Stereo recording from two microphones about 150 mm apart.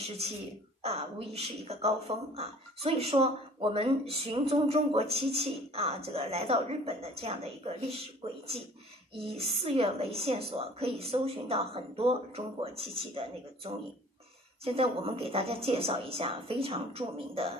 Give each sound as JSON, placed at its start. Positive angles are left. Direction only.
{"t": 0.8, "sound": "a woman's voice", "side_deg": -40}